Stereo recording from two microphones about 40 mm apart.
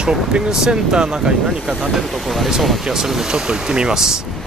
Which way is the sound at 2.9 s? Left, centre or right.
Centre.